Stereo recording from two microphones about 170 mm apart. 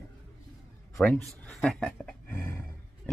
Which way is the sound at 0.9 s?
10° left (ahead or behind).